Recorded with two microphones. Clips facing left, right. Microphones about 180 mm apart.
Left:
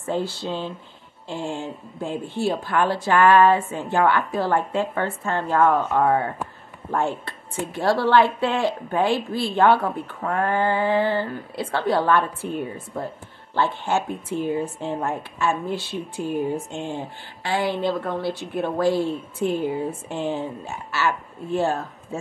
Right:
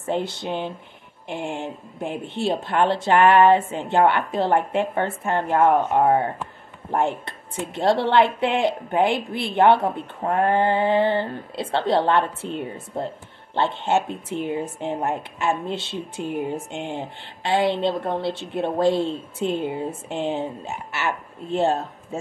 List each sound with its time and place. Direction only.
0.0 s speech: 20° right (ahead or behind)